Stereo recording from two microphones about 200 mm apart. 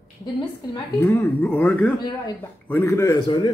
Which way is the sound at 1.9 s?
20° left (ahead or behind).